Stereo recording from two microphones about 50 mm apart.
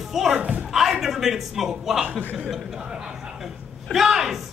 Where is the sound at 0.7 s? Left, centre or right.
Centre.